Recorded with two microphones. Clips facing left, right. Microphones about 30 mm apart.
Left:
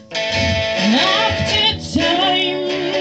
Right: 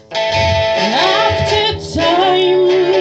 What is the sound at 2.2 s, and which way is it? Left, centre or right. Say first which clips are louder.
Music: right 6 dB; centre.